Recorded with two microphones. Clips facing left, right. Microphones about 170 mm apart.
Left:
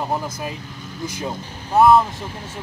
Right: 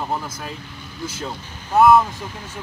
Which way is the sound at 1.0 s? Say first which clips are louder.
Left 2 dB; 15° left (ahead or behind).